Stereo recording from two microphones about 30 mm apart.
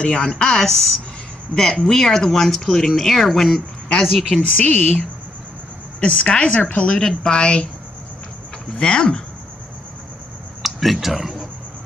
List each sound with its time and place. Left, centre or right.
0.0 s speech: left
0.6 s speech: centre
1.5 s speech: left
1.9 s speech: centre
4.4 s speech: left
5.9 s speech: left
8.7 s speech: left
10.6 s speech: centre